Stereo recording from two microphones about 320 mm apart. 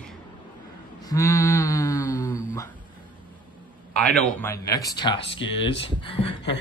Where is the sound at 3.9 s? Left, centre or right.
Centre.